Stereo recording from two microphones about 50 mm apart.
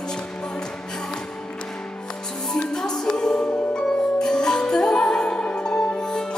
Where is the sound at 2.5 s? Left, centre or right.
Centre.